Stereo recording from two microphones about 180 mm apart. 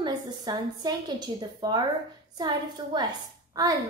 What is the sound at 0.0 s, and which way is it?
A woman's voice, 25° right (ahead or behind).